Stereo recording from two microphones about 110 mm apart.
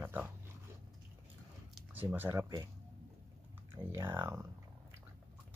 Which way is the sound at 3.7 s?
25° right (ahead or behind).